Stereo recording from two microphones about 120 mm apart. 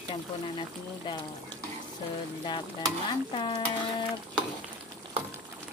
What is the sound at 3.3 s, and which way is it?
Speech, 45° left (ahead or behind).